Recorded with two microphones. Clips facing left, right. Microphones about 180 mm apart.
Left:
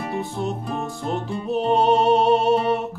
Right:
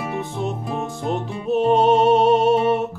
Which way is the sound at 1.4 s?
Centre (ahead or behind).